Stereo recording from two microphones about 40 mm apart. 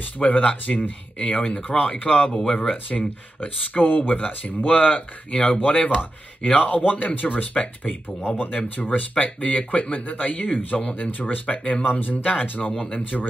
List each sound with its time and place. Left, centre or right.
0.2 s speech: left
0.7 s speech: left
1.5 s speech: left
2.9 s speech: left
4.1 s speech: left
5.3 s speech: left
5.6 s speech: left